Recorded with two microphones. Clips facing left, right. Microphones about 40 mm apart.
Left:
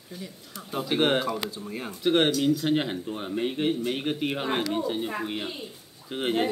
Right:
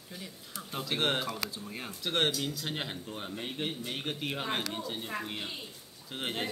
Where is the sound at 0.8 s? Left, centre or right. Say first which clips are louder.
Left 7 dB; centre.